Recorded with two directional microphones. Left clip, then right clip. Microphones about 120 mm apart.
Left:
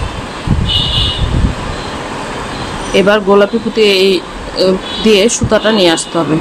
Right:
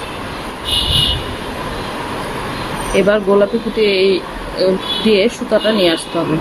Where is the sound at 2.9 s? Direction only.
15° left (ahead or behind).